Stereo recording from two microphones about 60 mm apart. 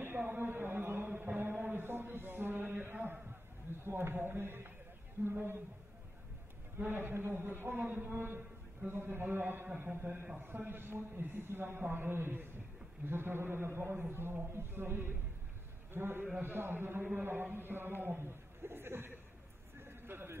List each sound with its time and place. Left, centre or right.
0.3 s a man's voice: right
6.8 s a man's voice: right
19.8 s a sound: right